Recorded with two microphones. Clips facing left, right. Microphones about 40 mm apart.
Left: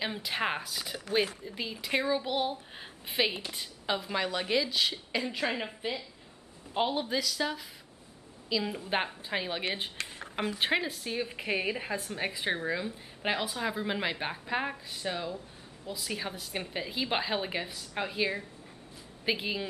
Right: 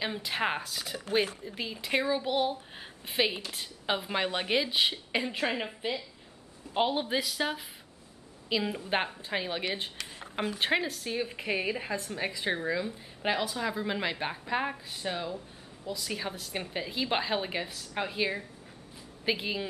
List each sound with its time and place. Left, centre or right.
0.0 s a woman's voice: centre
1.0 s speech: right
1.4 s a woman's voice: centre
3.8 s a woman's voice: centre
5.5 s a woman's voice: centre
7.1 s a woman's voice: right
8.6 s a woman's voice: centre
9.9 s a sound: left
10.6 s a woman's voice: centre